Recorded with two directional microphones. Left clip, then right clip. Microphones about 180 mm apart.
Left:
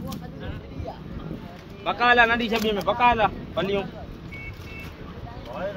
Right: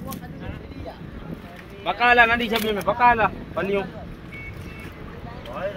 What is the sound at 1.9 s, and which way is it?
Speech, 45° right (ahead or behind).